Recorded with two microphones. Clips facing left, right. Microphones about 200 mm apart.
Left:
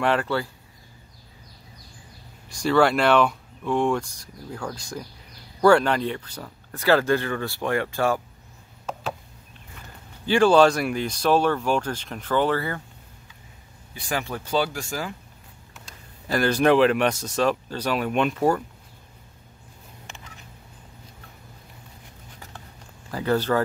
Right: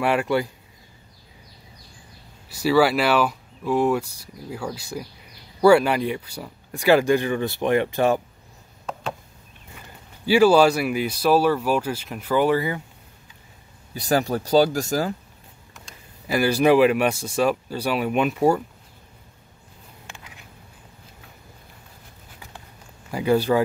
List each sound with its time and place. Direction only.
0.0 s speech: 10° right (ahead or behind)
2.5 s speech: 5° right (ahead or behind)
10.2 s speech: 10° right (ahead or behind)
13.9 s speech: 40° right (ahead or behind)
16.3 s speech: 10° right (ahead or behind)
23.1 s speech: 10° right (ahead or behind)